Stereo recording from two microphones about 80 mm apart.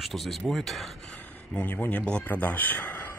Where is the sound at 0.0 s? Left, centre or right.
Centre.